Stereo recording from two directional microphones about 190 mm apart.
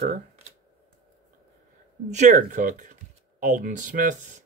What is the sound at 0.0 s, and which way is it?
Speech, 35° right (ahead or behind).